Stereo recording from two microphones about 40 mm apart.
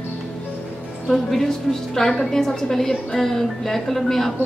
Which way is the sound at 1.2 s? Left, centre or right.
Centre.